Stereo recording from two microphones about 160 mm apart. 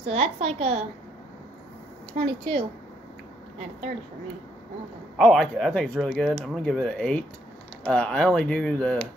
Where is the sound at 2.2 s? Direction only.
35° right (ahead or behind).